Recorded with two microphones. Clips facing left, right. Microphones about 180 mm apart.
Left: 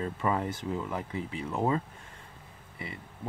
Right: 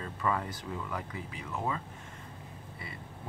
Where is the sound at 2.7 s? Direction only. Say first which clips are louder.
Left 6 dB; 20° left (ahead or behind).